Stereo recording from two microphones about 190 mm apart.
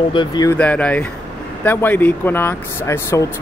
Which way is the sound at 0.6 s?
5° left (ahead or behind).